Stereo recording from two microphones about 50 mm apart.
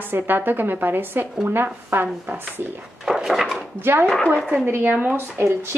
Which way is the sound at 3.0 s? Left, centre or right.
Centre.